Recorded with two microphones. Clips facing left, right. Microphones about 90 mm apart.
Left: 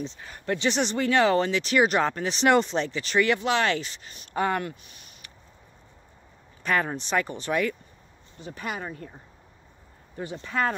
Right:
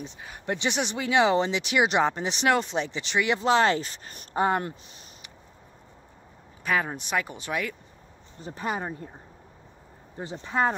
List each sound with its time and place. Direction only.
0.0 s speech: 10° right (ahead or behind)
2.4 s speech: 5° right (ahead or behind)
2.9 s speech: 20° right (ahead or behind)
3.3 s speech: 30° right (ahead or behind)
4.4 s speech: 25° right (ahead or behind)
6.6 s speech: 5° right (ahead or behind)
8.4 s speech: 30° right (ahead or behind)